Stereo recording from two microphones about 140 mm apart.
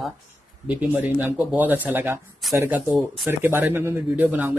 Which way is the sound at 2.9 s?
Centre (ahead or behind).